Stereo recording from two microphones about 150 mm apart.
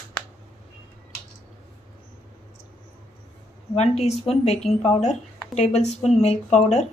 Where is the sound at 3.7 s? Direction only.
45° left (ahead or behind).